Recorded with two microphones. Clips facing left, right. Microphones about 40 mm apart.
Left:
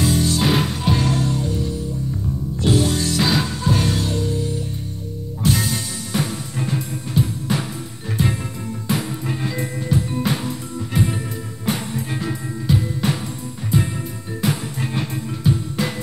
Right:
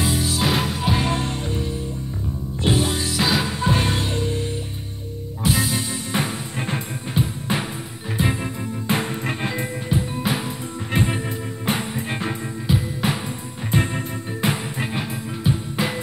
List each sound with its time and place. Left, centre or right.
0.0 s music: centre
0.9 s music: right; by 3.5 s centre
3.6 s music: right
5.4 s music: centre
6.1 s music: right
8.8 s music: right
9.2 s music: right
9.5 s music: right
10.9 s music: right
12.6 s music: centre
13.7 s music: right
14.4 s music: right